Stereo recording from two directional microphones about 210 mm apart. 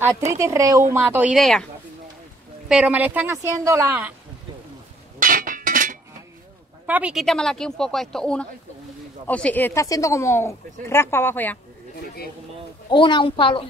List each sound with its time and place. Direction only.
0.3 s a woman's voice: 15° right (ahead or behind)
2.7 s a woman's voice: 5° right (ahead or behind)
5.2 s a sound: 40° right (ahead or behind)
6.9 s speech: 5° right (ahead or behind)
12.9 s a woman's voice: 25° left (ahead or behind)